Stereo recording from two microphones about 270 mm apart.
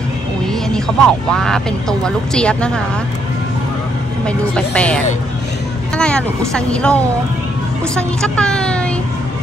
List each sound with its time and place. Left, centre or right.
0.7 s speech: centre
4.3 s a woman's voice: centre